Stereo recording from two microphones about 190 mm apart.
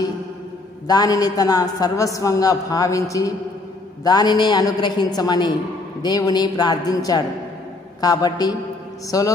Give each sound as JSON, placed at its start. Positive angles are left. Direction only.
{"t": 0.8, "sound": "a man's voice", "side_deg": 20}